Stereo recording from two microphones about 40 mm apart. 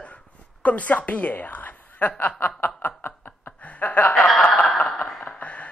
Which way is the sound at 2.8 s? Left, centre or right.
Left.